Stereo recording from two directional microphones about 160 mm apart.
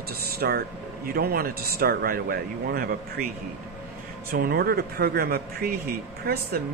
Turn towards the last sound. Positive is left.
turn(degrees=-70)  # may be behind; listen again after turning